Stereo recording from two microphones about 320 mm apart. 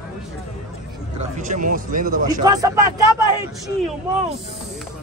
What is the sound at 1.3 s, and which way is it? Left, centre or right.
Speech, right.